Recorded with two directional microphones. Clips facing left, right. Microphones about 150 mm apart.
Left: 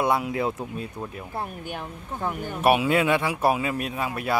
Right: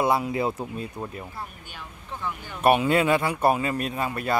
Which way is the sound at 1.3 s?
55° left (ahead or behind).